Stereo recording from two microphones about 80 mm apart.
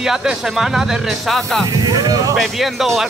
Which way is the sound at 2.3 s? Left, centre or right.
Centre.